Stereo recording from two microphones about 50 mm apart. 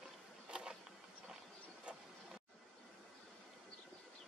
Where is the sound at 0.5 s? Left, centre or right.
Centre.